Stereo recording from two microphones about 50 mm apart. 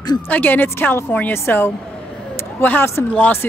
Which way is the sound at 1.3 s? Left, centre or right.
Left.